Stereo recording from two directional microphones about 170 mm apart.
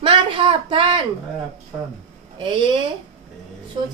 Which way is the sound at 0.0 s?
30° right (ahead or behind).